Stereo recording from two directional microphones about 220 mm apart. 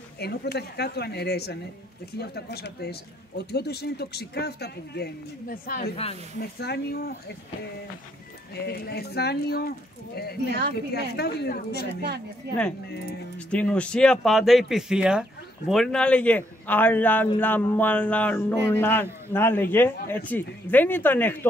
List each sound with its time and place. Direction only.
0.2 s speech: 45° left (ahead or behind)
8.5 s speech: 45° left (ahead or behind)
12.5 s speech: 50° right (ahead or behind)
13.4 s a man's voice: 5° left (ahead or behind)